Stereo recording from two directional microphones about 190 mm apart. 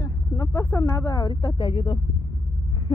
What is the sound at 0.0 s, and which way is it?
Speech, 15° left (ahead or behind).